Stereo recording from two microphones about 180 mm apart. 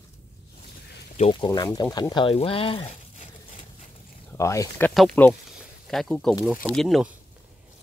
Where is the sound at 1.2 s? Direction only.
30° left (ahead or behind).